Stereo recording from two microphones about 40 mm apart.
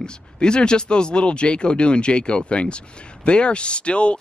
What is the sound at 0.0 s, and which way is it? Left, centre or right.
Speech, left.